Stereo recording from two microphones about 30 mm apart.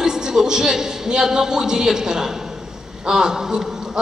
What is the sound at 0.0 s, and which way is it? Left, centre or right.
A man's voice, right.